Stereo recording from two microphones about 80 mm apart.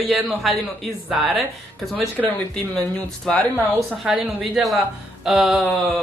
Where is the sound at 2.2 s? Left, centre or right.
Left.